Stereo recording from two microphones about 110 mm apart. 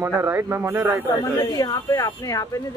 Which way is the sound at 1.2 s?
35° left (ahead or behind).